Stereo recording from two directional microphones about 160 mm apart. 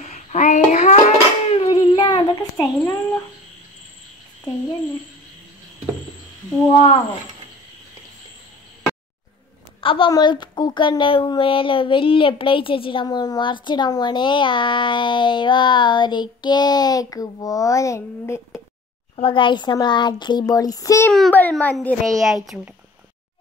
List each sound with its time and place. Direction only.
0.0 s dishes: 50° left (ahead or behind); by 2.2 s 30° left (ahead or behind)
2.8 s a child's voice: 15° left (ahead or behind)
6.7 s speech: 35° left (ahead or behind)
9.8 s speech: 35° left (ahead or behind); by 18.6 s 15° left (ahead or behind)
19.1 s speech: 30° left (ahead or behind)
21.1 s a child's voice: 5° left (ahead or behind)